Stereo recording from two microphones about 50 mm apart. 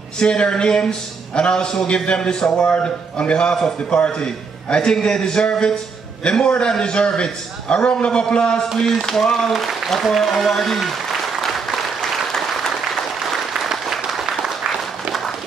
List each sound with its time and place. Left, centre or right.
0.2 s a man's voice: centre
11.4 s applause: centre